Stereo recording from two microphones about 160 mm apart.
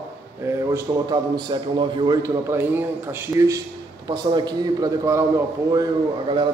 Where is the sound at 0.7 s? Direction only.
25° right (ahead or behind).